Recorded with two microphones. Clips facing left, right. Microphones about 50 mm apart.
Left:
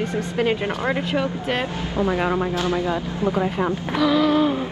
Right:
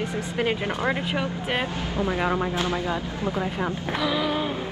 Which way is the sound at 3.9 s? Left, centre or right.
Centre.